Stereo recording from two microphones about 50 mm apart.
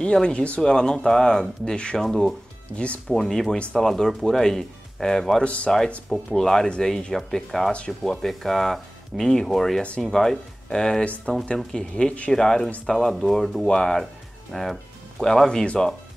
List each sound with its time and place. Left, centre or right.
0.0 s speech: centre
2.0 s speech: centre
2.8 s speech: left
3.2 s speech: centre
5.4 s speech: left
6.0 s speech: centre
7.7 s speech: left
8.1 s speech: centre
9.8 s speech: centre
10.0 s speech: centre
12.3 s speech: centre
13.7 s speech: centre
14.5 s music: centre
15.2 s speech: centre